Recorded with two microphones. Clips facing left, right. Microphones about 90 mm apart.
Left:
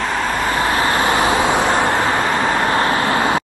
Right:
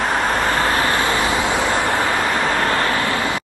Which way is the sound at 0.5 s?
20° left (ahead or behind).